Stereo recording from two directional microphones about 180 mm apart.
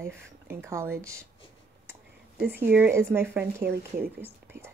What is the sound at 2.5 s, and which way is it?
Speech, 10° right (ahead or behind).